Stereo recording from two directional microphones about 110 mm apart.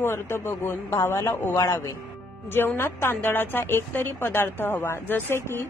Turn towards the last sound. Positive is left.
turn(degrees=20)  # may be behind; listen again after turning